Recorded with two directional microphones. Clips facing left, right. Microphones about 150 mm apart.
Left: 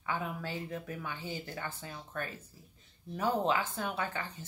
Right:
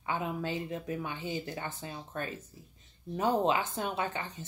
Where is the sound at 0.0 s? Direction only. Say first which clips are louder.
Right 3 dB; 20° right (ahead or behind).